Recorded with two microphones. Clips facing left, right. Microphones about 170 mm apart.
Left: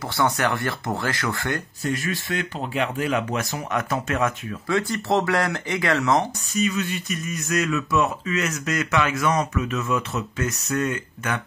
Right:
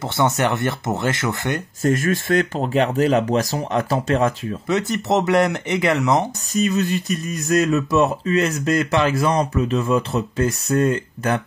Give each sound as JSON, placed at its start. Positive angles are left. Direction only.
{"t": 0.0, "sound": "speech", "side_deg": -20}
{"t": 1.8, "sound": "speech", "side_deg": -45}
{"t": 6.5, "sound": "speech", "side_deg": -40}